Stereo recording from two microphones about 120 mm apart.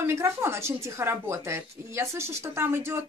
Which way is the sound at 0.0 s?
20° right (ahead or behind).